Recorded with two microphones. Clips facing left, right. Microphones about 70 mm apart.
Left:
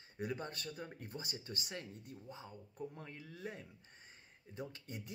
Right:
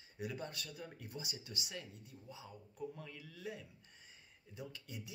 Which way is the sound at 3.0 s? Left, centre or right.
Left.